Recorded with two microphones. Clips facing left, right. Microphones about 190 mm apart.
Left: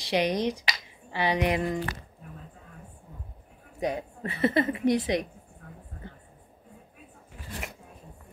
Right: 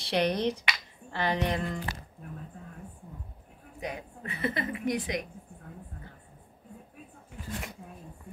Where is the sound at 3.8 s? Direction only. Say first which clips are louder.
Left 7 dB; 35° left (ahead or behind).